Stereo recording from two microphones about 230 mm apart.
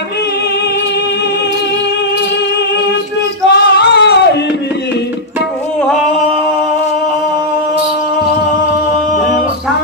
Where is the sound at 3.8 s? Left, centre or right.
Left.